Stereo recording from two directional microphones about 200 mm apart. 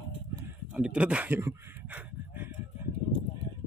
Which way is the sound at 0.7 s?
5° right (ahead or behind).